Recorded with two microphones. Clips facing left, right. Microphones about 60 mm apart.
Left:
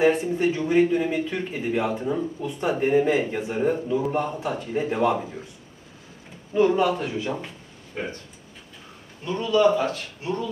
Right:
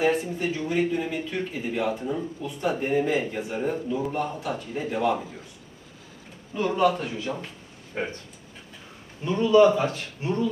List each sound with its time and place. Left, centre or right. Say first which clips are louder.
0.0 s speech: left 4 dB; left
6.5 s speech: left 3 dB; left
9.2 s speech: right 2 dB; right